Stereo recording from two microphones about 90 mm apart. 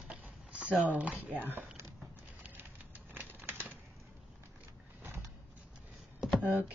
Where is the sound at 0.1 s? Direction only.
15° right (ahead or behind).